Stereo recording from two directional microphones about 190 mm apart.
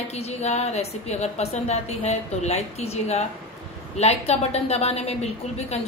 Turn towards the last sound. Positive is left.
turn(degrees=35)  # may be behind; listen again after turning